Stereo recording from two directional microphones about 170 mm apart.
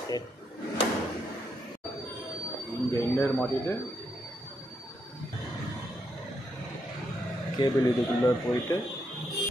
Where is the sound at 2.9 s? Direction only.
15° left (ahead or behind).